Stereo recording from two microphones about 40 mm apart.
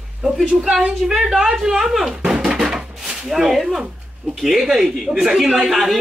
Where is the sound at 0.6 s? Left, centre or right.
Centre.